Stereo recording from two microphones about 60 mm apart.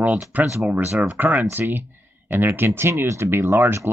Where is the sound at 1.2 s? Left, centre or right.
Right.